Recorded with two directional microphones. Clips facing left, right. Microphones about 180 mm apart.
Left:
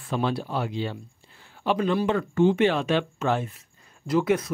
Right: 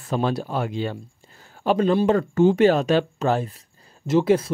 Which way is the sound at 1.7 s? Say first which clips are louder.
Right 5 dB; 40° right (ahead or behind).